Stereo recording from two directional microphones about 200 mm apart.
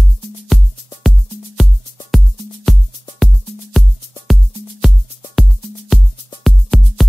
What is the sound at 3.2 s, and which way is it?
Music, centre (ahead or behind).